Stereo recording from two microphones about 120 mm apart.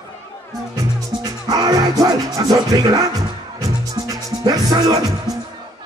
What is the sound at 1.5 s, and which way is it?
Music, 30° right (ahead or behind).